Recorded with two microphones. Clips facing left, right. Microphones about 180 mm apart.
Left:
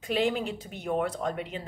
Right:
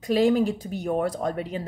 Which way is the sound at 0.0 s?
40° right (ahead or behind).